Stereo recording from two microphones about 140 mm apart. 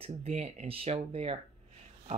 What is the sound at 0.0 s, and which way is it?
A woman's voice, 50° right (ahead or behind).